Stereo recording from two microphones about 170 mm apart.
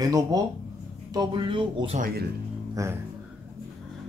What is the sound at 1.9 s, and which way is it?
Speech, 55° right (ahead or behind).